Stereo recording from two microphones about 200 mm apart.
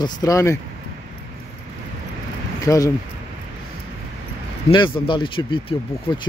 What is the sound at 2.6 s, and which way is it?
Speech, 15° left (ahead or behind).